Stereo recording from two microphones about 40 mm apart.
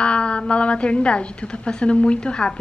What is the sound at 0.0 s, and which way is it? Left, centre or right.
A woman's voice, left.